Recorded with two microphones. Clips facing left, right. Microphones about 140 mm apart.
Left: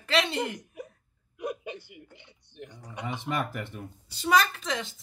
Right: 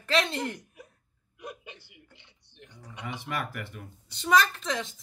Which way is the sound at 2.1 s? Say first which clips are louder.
Left 7 dB; 50° left (ahead or behind).